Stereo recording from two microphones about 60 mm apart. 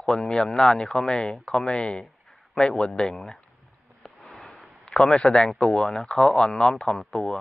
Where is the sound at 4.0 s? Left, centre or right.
Centre.